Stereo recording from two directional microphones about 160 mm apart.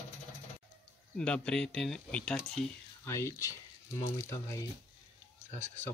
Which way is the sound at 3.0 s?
20° left (ahead or behind).